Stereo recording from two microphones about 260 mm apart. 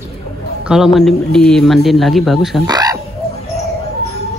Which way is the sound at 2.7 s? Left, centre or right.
Centre.